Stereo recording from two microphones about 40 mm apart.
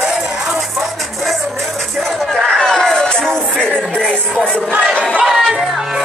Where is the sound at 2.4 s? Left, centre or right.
Centre.